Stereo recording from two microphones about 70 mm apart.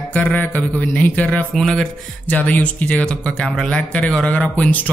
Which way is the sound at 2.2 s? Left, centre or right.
Left.